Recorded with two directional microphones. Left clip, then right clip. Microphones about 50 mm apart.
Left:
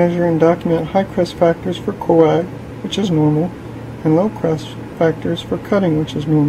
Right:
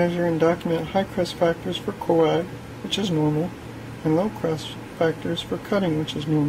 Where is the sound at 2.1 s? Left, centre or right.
Centre.